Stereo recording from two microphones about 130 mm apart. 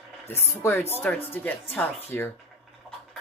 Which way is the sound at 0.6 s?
20° left (ahead or behind).